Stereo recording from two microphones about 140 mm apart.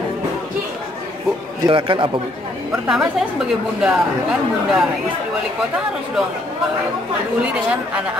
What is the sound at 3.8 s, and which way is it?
Speech, 5° right (ahead or behind).